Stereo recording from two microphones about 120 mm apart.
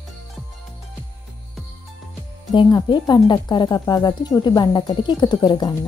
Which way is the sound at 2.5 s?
40° left (ahead or behind).